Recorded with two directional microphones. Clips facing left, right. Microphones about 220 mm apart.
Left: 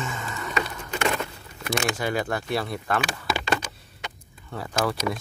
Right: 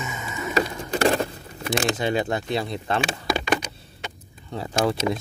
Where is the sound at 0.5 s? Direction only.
35° right (ahead or behind).